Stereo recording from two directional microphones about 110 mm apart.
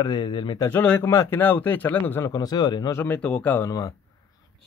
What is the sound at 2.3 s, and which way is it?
Speech, 35° left (ahead or behind).